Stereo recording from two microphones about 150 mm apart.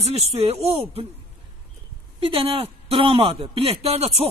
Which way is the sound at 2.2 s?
40° right (ahead or behind).